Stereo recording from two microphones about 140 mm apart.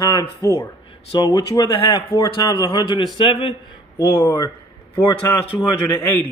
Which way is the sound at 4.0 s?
20° left (ahead or behind).